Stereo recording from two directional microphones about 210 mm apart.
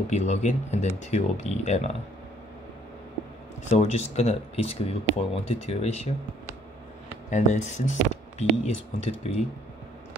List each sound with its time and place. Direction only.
0.1 s speech: 35° left (ahead or behind)
3.7 s speech: 30° left (ahead or behind)
7.1 s speech: 35° left (ahead or behind)